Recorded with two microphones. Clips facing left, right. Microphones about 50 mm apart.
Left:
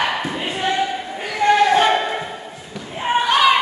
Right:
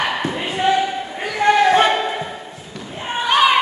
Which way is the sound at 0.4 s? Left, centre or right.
Centre.